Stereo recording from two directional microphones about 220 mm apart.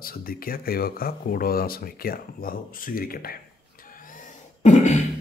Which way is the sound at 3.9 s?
40° left (ahead or behind).